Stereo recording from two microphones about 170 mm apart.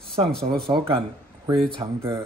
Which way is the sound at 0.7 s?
30° right (ahead or behind).